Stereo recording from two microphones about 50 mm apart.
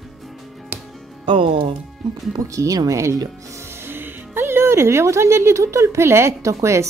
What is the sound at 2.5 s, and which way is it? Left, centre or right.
Speech, right.